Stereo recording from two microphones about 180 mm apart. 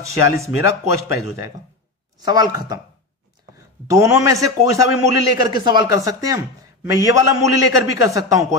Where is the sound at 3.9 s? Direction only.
15° right (ahead or behind).